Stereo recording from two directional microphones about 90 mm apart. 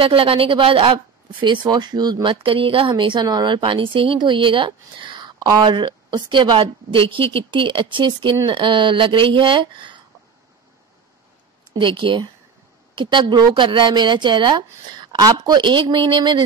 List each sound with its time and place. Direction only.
0.0 s speech: 90° right; by 0.9 s 75° right (ahead or behind)
0.9 s a woman's voice: 60° right (ahead or behind)
2.2 s a woman's voice: 75° right (ahead or behind)
11.8 s a woman's voice: 70° right (ahead or behind)